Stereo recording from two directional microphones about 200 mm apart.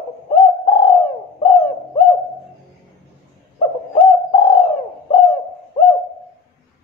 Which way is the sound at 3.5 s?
25° left (ahead or behind).